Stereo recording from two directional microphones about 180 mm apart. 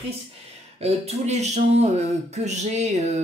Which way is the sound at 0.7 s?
35° right (ahead or behind).